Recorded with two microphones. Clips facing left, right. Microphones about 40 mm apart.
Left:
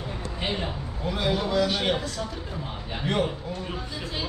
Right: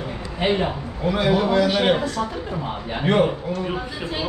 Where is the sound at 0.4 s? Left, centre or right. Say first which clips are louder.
Right 10 dB; right.